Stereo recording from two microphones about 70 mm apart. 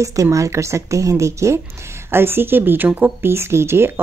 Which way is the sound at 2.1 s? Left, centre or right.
Right.